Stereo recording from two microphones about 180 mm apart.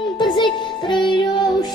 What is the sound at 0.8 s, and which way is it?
Music, 25° left (ahead or behind).